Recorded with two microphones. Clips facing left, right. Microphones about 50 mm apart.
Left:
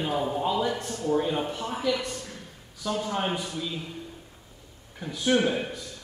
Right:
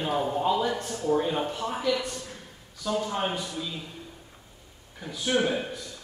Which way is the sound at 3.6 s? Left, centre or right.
Left.